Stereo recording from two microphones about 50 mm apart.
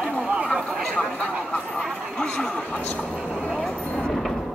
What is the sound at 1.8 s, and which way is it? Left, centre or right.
Speech, centre.